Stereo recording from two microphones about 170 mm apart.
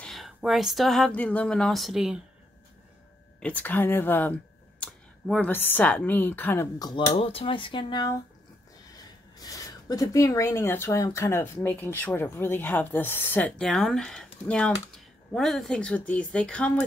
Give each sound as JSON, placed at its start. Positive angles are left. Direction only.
{"t": 0.0, "sound": "speech", "side_deg": 0}
{"t": 3.3, "sound": "speech", "side_deg": 10}
{"t": 6.8, "sound": "speech", "side_deg": 25}
{"t": 9.4, "sound": "speech", "side_deg": 20}